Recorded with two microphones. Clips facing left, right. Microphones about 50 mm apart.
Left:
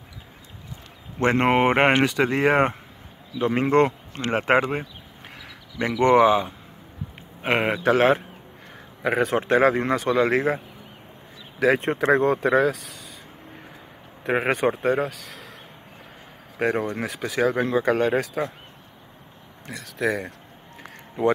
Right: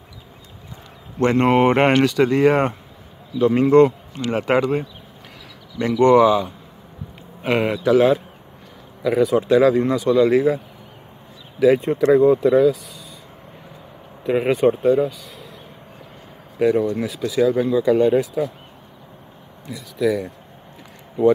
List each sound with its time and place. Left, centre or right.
1.2 s speech: left
11.6 s speech: left
12.7 s a sound: left
14.2 s speech: left
16.5 s speech: left
19.6 s speech: left